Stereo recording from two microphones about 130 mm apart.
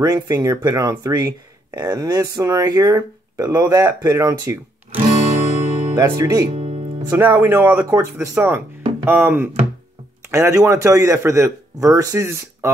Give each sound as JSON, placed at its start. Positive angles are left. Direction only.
{"t": 0.0, "sound": "speech", "side_deg": -30}
{"t": 4.9, "sound": "music", "side_deg": -60}
{"t": 5.9, "sound": "speech", "side_deg": -25}
{"t": 6.5, "sound": "music", "side_deg": -55}
{"t": 7.1, "sound": "speech", "side_deg": -15}